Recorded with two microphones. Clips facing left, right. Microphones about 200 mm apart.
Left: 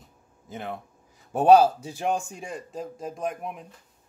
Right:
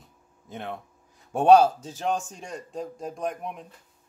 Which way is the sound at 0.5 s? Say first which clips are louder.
Left 1 dB; centre (ahead or behind).